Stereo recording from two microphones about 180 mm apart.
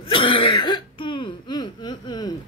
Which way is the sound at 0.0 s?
30° left (ahead or behind).